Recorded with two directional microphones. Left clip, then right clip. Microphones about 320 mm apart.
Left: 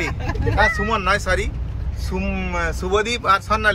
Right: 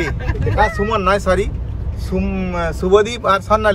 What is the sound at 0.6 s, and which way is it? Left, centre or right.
Speech, centre.